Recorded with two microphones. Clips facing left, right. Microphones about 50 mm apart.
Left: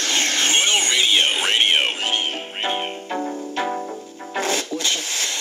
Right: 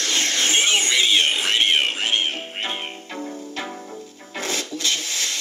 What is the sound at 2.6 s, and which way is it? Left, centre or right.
Music, centre.